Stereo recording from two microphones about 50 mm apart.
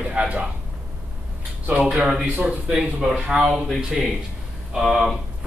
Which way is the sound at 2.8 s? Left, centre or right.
Centre.